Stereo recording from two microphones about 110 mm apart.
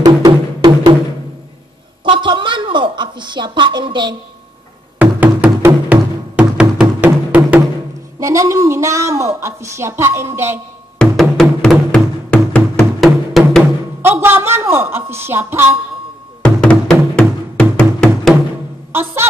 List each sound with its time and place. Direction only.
0.0 s music: 40° right (ahead or behind)
2.0 s a woman's voice: 50° right (ahead or behind)
5.0 s music: 20° right (ahead or behind)
8.2 s a woman's voice: 30° right (ahead or behind)
11.0 s music: 5° left (ahead or behind)
14.0 s a woman's voice: 20° right (ahead or behind)
16.4 s music: 10° left (ahead or behind)
18.9 s a woman's voice: 20° right (ahead or behind)